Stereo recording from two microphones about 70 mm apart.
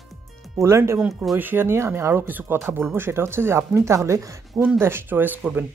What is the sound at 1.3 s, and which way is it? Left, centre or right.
Speech, right.